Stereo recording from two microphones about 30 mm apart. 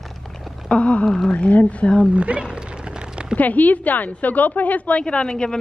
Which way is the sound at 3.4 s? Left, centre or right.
Left.